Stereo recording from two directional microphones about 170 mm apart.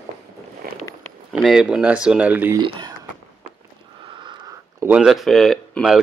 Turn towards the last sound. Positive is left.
turn(degrees=0)  # may be behind; listen again after turning